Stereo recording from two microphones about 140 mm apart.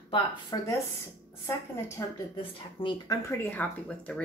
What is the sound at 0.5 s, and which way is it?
Speech, 30° left (ahead or behind).